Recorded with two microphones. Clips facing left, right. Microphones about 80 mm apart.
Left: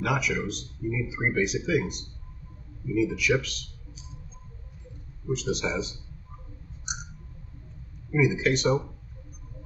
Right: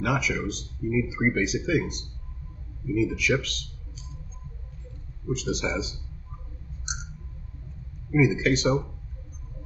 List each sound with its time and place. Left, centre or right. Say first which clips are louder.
0.0 s speech: right 1 dB; centre
5.3 s speech: even; centre
8.1 s speech: right 2 dB; centre